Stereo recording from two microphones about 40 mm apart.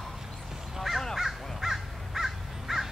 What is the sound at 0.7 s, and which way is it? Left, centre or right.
Crow, centre.